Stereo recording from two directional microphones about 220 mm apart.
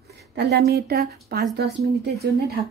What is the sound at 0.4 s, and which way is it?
Speech, 45° right (ahead or behind).